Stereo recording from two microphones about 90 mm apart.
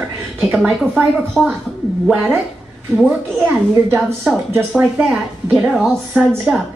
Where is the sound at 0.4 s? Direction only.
5° right (ahead or behind).